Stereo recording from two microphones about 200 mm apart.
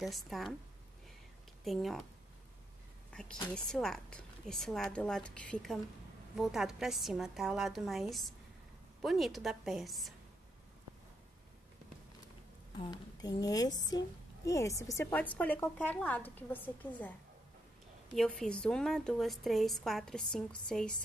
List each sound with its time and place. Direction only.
0.0 s a woman's voice: centre (ahead or behind)
1.6 s speech: centre (ahead or behind)
3.1 s a sound: 5° left (ahead or behind)
3.5 s a woman's voice: centre (ahead or behind)
12.9 s a woman's voice: 20° left (ahead or behind)
18.1 s a woman's voice: centre (ahead or behind)